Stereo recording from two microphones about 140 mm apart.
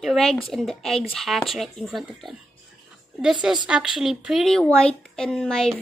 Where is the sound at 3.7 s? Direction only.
5° right (ahead or behind).